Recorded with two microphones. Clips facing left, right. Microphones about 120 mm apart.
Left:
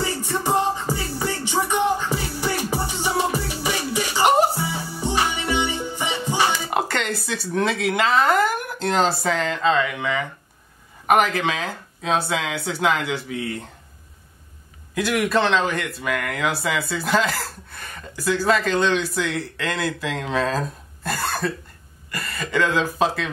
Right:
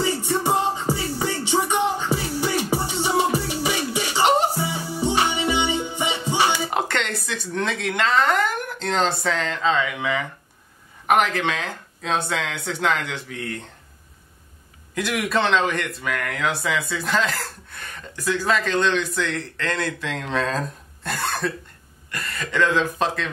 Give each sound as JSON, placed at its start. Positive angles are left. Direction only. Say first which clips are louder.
{"t": 0.2, "sound": "music", "louder": "even", "side_deg": -20}
{"t": 6.7, "sound": "speech", "louder": "left 1 dB", "side_deg": 5}
{"t": 15.0, "sound": "speech", "louder": "left 2 dB", "side_deg": 0}